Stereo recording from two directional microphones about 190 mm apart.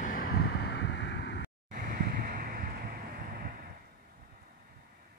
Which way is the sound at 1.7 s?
45° right (ahead or behind).